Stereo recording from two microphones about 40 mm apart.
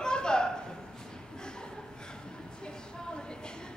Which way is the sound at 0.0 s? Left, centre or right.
Centre.